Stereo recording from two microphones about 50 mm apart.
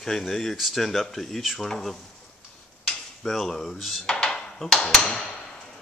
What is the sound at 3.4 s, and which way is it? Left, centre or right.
Speech, centre.